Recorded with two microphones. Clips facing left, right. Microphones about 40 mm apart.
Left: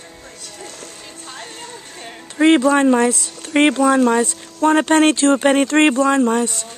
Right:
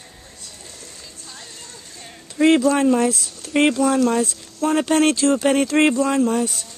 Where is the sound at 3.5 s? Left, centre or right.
Left.